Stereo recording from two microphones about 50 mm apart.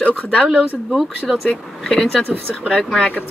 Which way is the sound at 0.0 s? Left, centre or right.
Left.